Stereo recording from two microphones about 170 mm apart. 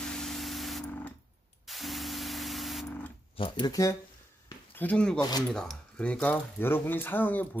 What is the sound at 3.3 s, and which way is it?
Speech, 30° left (ahead or behind).